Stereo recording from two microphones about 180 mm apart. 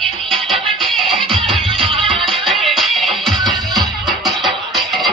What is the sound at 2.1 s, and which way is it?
Music, centre (ahead or behind).